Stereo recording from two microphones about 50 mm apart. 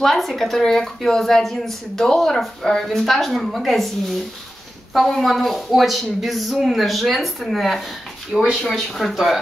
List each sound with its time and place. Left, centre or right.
0.0 s a woman's voice: centre
4.9 s a woman's voice: centre
8.3 s speech: centre
8.6 s a woman's voice: centre